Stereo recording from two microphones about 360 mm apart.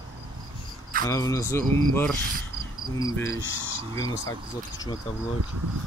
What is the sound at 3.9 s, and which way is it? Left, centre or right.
Speech, centre.